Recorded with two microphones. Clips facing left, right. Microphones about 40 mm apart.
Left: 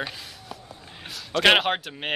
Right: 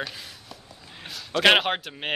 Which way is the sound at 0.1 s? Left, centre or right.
Centre.